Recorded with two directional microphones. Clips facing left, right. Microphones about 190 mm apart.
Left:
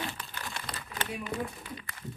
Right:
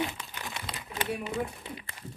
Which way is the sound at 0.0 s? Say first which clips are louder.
Right 4 dB; 15° right (ahead or behind).